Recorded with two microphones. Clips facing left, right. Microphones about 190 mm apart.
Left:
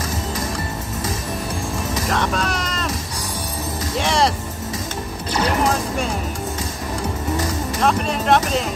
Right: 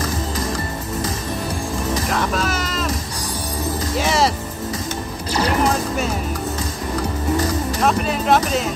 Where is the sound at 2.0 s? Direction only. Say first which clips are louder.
Left 2 dB; centre (ahead or behind).